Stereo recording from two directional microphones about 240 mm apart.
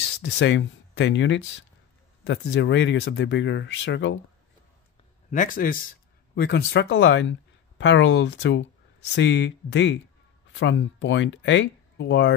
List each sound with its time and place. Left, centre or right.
0.2 s speech: left
5.3 s speech: left